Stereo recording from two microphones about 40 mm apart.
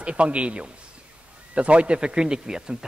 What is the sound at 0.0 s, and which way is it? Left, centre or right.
A man's voice, right.